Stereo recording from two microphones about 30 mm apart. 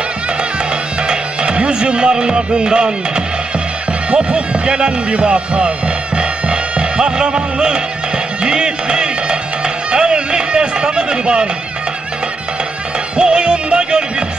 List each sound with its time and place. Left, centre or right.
1.0 s music: right
4.1 s speech: right
6.1 s music: right
9.8 s a sound: right
13.2 s music: right